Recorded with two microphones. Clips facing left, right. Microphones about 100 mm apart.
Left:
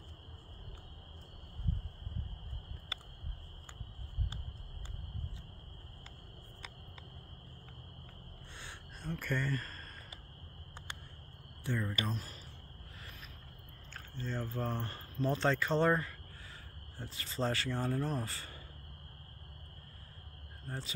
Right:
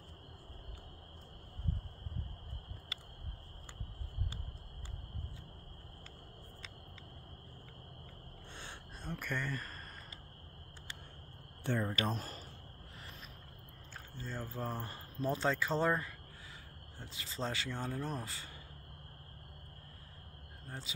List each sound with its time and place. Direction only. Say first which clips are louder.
8.5 s a sound: right 1 dB; 20° right (ahead or behind)
9.2 s speech: left 3 dB; 5° right (ahead or behind)
11.6 s speech: right 2 dB; 25° right (ahead or behind)
12.1 s a man's voice: right 2 dB; 45° right (ahead or behind)
14.1 s speech: left 4 dB; 5° right (ahead or behind)
20.7 s a sound: left 4 dB; centre (ahead or behind)